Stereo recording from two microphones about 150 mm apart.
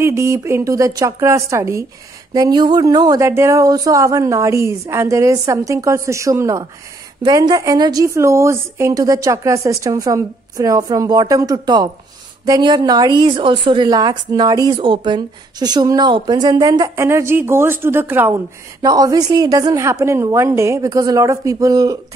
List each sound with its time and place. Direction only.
0.0 s a woman's voice: 20° right (ahead or behind)